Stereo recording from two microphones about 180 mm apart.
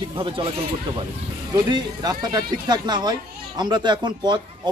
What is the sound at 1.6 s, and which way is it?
Speech, 20° right (ahead or behind).